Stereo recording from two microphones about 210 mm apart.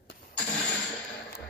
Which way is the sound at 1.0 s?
45° left (ahead or behind).